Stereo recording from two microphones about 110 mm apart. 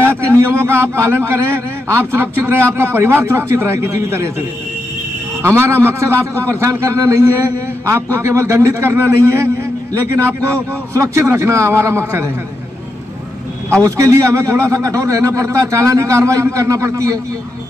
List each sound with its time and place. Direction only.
0.0 s a sound: 20° right (ahead or behind)
0.9 s a man's voice: 25° right (ahead or behind)
13.8 s a man's voice: 30° right (ahead or behind)